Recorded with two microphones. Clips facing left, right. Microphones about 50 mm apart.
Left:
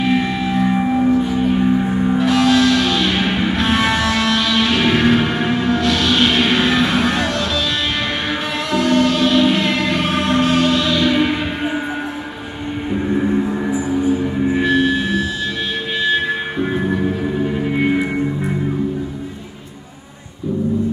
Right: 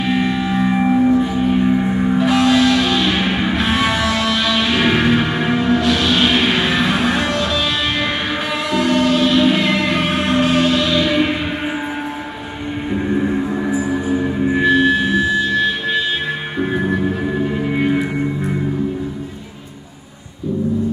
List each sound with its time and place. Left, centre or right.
0.0 s music: centre
8.7 s music: centre
12.9 s music: centre
13.8 s music: right
14.5 s music: centre